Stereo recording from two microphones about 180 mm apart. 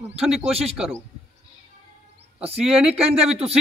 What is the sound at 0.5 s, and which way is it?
Speech, 35° right (ahead or behind).